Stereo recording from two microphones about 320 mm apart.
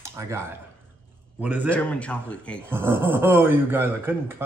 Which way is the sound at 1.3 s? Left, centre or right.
Centre.